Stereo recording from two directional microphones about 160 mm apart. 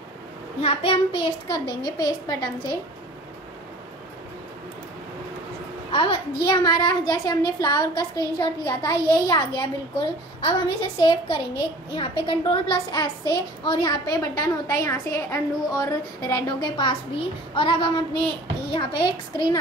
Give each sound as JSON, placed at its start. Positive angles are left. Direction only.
{"t": 0.6, "sound": "a child's voice", "side_deg": 35}
{"t": 5.9, "sound": "a child's voice", "side_deg": 35}